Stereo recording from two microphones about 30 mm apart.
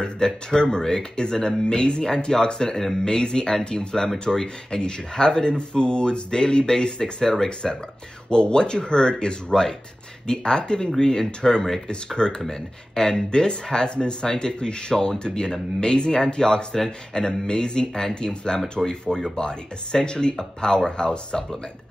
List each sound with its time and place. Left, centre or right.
0.0 s speech: left
9.5 s speech: centre
19.0 s speech: centre
19.3 s speech: left